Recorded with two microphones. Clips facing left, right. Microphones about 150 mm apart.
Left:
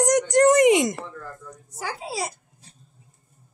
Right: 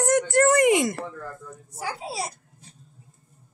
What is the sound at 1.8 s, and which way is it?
Speech, 90° left.